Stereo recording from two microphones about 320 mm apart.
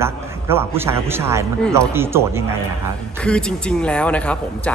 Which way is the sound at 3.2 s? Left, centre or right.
Centre.